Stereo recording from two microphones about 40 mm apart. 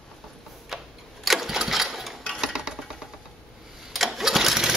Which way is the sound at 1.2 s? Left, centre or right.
Centre.